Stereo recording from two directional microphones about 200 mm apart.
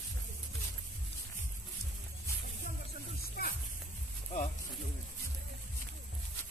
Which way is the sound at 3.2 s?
50° left (ahead or behind).